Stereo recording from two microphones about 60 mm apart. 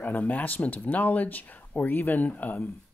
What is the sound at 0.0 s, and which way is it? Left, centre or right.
Speech, left.